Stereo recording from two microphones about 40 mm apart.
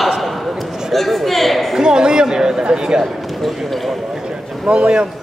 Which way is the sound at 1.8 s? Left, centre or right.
Centre.